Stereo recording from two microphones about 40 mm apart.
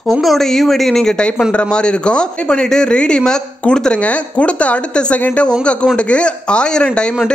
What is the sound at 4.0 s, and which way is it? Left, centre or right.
A woman's voice, left.